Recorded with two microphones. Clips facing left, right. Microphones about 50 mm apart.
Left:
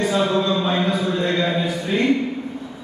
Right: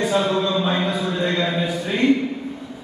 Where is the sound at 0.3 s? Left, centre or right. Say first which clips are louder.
Left 1 dB; centre.